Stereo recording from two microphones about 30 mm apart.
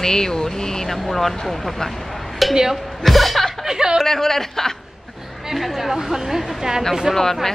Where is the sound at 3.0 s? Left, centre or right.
Centre.